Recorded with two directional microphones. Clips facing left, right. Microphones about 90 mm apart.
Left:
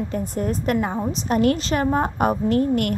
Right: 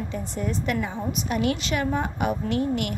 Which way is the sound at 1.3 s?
45° left (ahead or behind).